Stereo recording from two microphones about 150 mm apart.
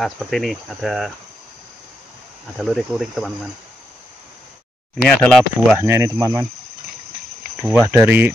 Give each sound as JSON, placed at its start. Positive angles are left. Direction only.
{"t": 0.0, "sound": "cricket", "side_deg": 0}
{"t": 2.5, "sound": "cricket", "side_deg": 0}
{"t": 5.0, "sound": "cricket", "side_deg": 5}
{"t": 5.8, "sound": "speech", "side_deg": -15}
{"t": 7.9, "sound": "speech", "side_deg": -10}